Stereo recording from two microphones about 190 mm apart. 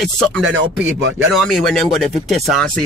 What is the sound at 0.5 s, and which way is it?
Speech, 85° right.